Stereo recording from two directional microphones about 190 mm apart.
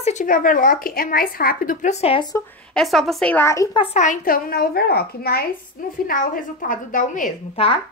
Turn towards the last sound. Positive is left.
turn(degrees=30)  # may be behind; listen again after turning